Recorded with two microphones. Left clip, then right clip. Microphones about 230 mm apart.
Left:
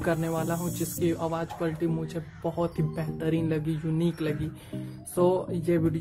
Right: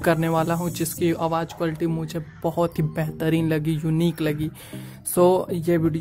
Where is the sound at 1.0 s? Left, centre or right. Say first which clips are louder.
Right 6 dB; right.